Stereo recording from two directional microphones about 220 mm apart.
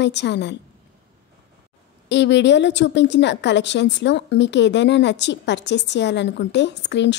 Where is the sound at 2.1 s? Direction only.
55° left (ahead or behind).